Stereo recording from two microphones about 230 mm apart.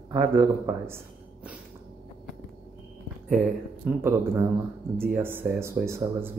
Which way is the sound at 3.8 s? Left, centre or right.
Centre.